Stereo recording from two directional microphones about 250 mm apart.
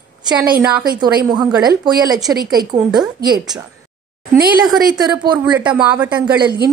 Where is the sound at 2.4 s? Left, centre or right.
Right.